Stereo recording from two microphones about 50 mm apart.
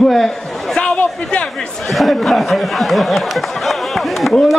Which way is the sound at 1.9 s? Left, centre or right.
Centre.